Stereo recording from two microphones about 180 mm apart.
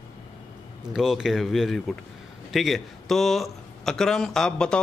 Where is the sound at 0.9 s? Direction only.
5° right (ahead or behind).